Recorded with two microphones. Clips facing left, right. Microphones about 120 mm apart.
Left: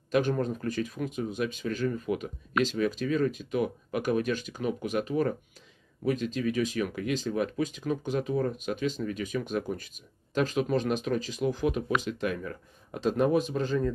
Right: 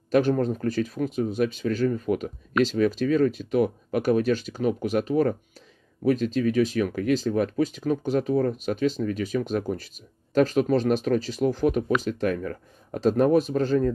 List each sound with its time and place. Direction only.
0.1 s speech: 35° right (ahead or behind)